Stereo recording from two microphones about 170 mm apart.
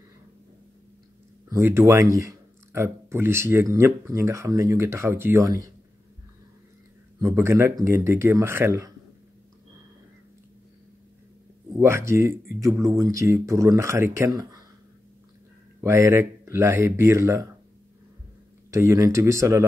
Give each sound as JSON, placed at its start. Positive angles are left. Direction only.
{"t": 1.5, "sound": "speech", "side_deg": -15}
{"t": 7.2, "sound": "speech", "side_deg": -15}
{"t": 11.8, "sound": "speech", "side_deg": -15}
{"t": 15.8, "sound": "speech", "side_deg": -15}
{"t": 18.7, "sound": "speech", "side_deg": -15}